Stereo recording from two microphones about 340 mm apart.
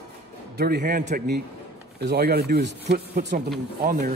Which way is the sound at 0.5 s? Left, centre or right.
Right.